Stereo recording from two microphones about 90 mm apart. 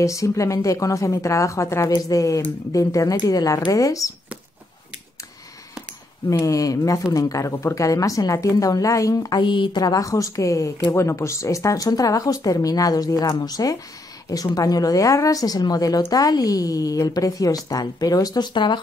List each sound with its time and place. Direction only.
0.0 s a woman's voice: 35° left (ahead or behind)
6.3 s a woman's voice: 40° left (ahead or behind)
9.4 s a woman's voice: 65° left (ahead or behind); by 18.5 s 45° left (ahead or behind)
18.5 s speech: 60° left (ahead or behind)